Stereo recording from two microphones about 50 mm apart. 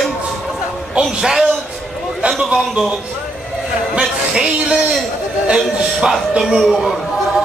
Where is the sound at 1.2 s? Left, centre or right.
Centre.